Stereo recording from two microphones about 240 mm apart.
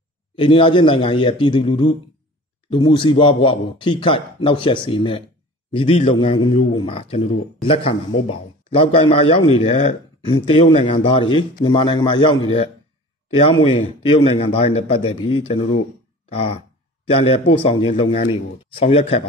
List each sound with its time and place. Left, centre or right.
0.4 s a man's voice: left
17.1 s a man's voice: left